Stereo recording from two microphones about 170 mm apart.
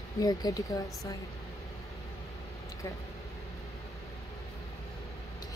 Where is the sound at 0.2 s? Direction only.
20° left (ahead or behind).